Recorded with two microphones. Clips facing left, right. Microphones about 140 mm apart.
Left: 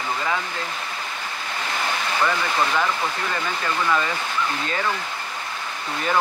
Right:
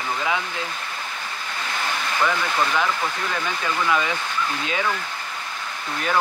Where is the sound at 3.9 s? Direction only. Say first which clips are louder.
Even; 5° right (ahead or behind).